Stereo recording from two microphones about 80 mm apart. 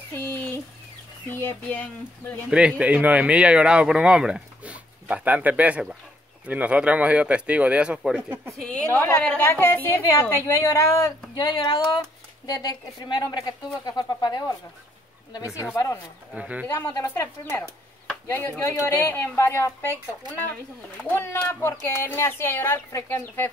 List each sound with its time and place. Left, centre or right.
0.1 s a sound: left
1.2 s a woman's voice: left
2.8 s speech: centre
8.6 s speech: centre
9.5 s a woman's voice: left
10.4 s speech: left
11.3 s a woman's voice: left
15.4 s speech: left
16.3 s speech: centre
17.1 s a woman's voice: left
21.1 s speech: left